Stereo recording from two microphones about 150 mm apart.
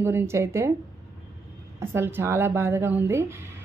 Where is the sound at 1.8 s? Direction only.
15° right (ahead or behind).